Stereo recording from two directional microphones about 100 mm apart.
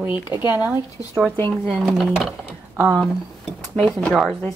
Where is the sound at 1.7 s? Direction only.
5° right (ahead or behind).